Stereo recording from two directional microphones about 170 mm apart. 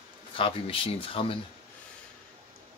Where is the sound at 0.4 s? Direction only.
30° left (ahead or behind).